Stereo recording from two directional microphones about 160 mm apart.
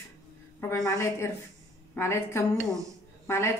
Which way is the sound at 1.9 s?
15° left (ahead or behind).